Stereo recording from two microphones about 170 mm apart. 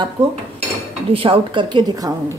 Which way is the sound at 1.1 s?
30° right (ahead or behind).